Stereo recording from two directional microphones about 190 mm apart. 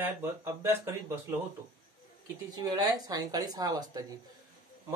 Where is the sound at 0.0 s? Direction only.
10° right (ahead or behind).